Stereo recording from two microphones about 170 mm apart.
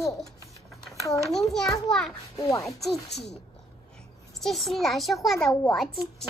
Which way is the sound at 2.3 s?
20° left (ahead or behind).